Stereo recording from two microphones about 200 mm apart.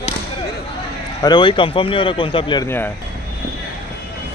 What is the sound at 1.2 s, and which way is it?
Speech, 20° left (ahead or behind).